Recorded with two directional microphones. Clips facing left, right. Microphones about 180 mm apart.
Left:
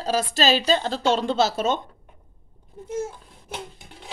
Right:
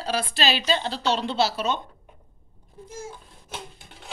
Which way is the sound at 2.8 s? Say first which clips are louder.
Left 9 dB; 65° left (ahead or behind).